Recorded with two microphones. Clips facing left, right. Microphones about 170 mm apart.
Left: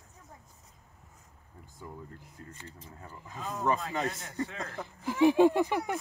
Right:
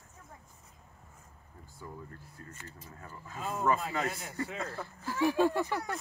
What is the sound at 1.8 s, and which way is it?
Speech, 15° left (ahead or behind).